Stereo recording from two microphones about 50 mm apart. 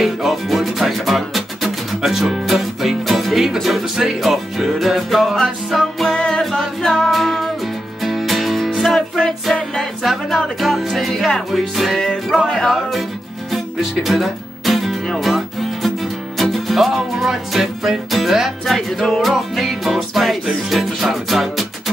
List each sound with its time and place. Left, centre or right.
0.0 s music: centre
6.1 s music: centre
6.4 s music: centre
8.9 s music: centre
12.0 s music: centre